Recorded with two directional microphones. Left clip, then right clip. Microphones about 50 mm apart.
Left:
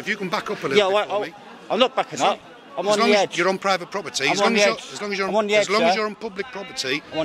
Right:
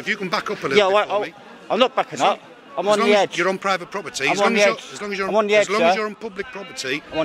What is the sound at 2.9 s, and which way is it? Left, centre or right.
Speech, centre.